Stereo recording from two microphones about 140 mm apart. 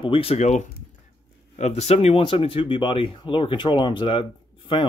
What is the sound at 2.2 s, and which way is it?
Speech, 40° left (ahead or behind).